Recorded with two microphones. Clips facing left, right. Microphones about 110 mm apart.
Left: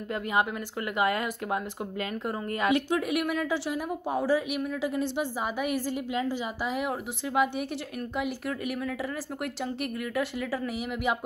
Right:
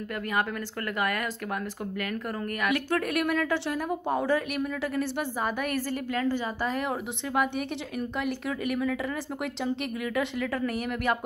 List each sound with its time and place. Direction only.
0.1 s speech: 20° left (ahead or behind)
3.1 s a woman's voice: 10° left (ahead or behind)